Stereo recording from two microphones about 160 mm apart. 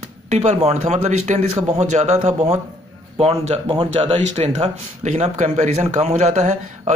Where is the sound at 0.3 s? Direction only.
45° right (ahead or behind).